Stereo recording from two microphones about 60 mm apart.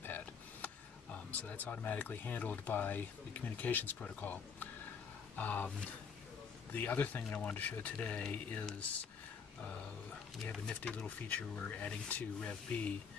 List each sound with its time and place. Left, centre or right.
0.0 s a sound: left
1.1 s speech: left
6.7 s speech: left
7.2 s speech: centre
7.5 s speech: left
10.8 s speech: left